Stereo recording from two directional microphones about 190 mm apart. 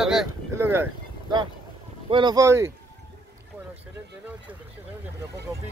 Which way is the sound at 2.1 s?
25° right (ahead or behind).